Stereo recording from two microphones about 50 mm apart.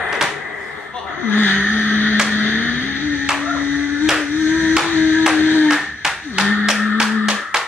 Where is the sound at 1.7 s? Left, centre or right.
Left.